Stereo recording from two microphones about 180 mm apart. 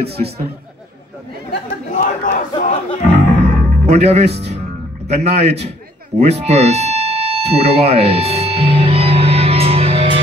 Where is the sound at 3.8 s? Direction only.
35° right (ahead or behind).